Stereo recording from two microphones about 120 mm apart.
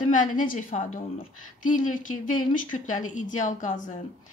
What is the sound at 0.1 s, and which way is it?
A woman's voice, 90° left.